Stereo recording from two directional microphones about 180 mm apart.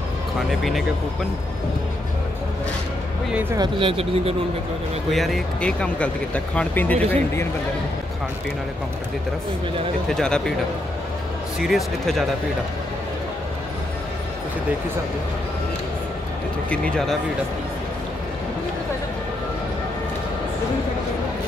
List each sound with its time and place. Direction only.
0.5 s speech: centre (ahead or behind)
3.5 s speech: 25° right (ahead or behind)
5.1 s speech: centre (ahead or behind)
10.0 s speech: 5° left (ahead or behind)
11.6 s speech: centre (ahead or behind)
16.7 s speech: 5° left (ahead or behind)